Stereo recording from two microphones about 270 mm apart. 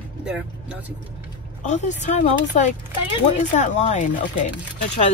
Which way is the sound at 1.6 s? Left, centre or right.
Left.